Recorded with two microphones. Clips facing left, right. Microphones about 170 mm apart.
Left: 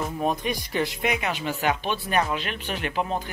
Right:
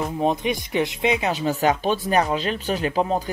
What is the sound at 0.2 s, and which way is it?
Speech, 20° right (ahead or behind).